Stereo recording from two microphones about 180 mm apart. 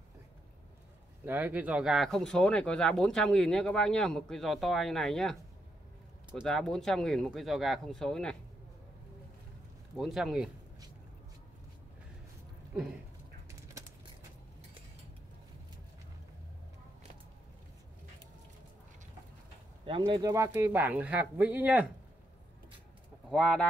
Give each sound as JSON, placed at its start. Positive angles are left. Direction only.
{"t": 1.2, "sound": "speech", "side_deg": -10}
{"t": 9.9, "sound": "speech", "side_deg": 0}
{"t": 13.5, "sound": "a sound", "side_deg": -15}
{"t": 20.1, "sound": "speech", "side_deg": -20}
{"t": 23.3, "sound": "speech", "side_deg": 5}